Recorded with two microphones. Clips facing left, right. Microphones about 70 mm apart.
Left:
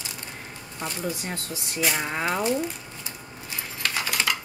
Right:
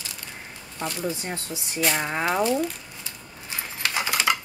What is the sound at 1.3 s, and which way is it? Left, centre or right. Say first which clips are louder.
Speech: right 1 dB; centre.